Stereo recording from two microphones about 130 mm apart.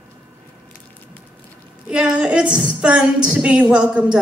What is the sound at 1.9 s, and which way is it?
A woman's voice, 5° right (ahead or behind).